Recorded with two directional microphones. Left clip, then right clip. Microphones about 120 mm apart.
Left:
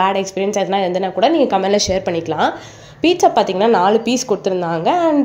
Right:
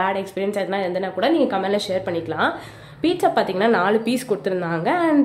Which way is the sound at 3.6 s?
20° left (ahead or behind).